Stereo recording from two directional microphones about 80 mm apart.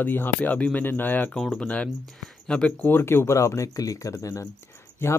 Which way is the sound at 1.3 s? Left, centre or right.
Centre.